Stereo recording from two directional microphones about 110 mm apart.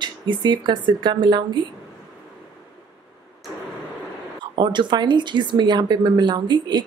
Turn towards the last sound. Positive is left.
turn(degrees=-40)  # may be behind; listen again after turning